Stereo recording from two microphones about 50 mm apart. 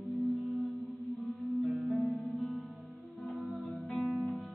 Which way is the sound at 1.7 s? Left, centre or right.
Centre.